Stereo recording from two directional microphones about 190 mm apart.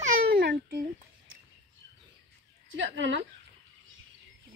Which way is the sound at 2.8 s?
70° right (ahead or behind).